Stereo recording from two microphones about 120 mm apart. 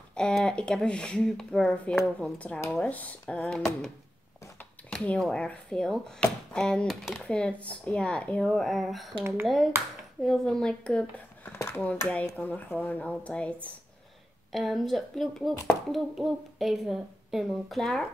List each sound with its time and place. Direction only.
0.1 s speech: 5° left (ahead or behind)
4.8 s a child's voice: 5° left (ahead or behind)
10.2 s a child's voice: centre (ahead or behind)
11.5 s speech: 20° left (ahead or behind)
14.5 s a child's voice: centre (ahead or behind)